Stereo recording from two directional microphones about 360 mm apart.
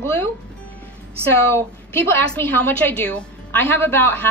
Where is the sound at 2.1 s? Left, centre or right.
Centre.